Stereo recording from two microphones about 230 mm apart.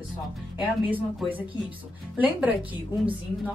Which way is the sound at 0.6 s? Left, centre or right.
Centre.